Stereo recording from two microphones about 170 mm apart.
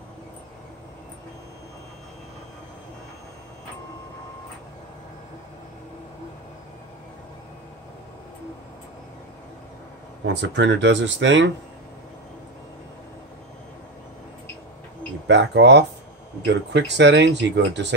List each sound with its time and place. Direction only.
10.2 s speech: 90° right
15.2 s speech: 90° right